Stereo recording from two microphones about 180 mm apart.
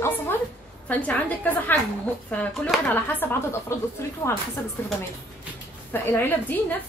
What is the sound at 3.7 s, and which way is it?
Speech, 15° left (ahead or behind).